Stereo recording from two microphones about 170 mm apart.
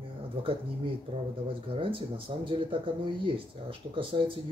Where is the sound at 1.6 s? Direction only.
30° right (ahead or behind).